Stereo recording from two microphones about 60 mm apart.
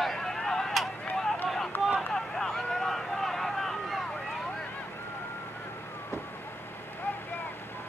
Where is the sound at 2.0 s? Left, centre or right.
Centre.